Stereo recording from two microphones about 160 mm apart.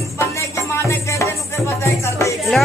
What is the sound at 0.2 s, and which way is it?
Music, 20° left (ahead or behind).